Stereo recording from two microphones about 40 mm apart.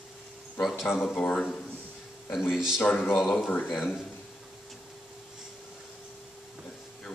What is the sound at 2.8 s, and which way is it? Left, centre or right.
Speech, left.